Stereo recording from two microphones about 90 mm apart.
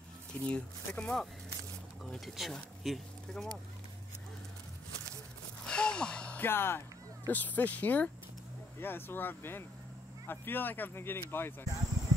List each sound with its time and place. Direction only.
0.3 s speech: 10° left (ahead or behind)
5.7 s gasp: 10° left (ahead or behind)
6.4 s speech: 25° left (ahead or behind)